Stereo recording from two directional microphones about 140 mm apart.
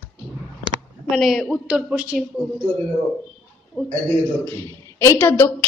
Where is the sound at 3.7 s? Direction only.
Centre (ahead or behind).